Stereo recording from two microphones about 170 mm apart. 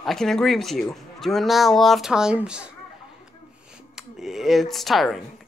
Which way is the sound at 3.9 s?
Centre (ahead or behind).